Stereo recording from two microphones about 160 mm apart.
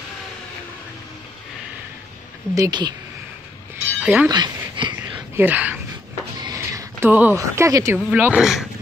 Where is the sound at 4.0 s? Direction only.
10° right (ahead or behind).